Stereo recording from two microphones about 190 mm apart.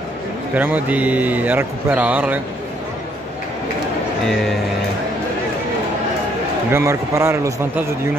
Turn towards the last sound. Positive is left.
turn(degrees=-15)  # may be behind; listen again after turning